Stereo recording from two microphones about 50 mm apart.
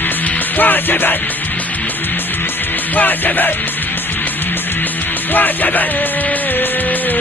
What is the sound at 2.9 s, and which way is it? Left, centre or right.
Music, left.